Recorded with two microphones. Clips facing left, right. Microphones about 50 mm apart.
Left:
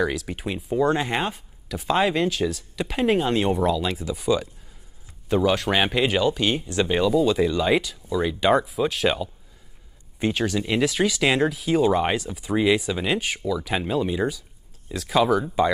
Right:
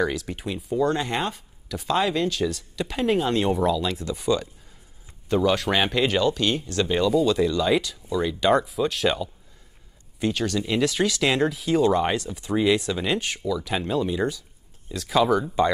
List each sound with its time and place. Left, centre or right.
0.0 s speech: centre
0.7 s speech: left
2.3 s speech: centre
10.1 s speech: left; by 15.7 s centre